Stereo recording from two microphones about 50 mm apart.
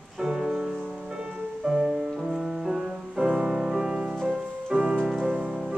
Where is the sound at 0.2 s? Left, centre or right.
Centre.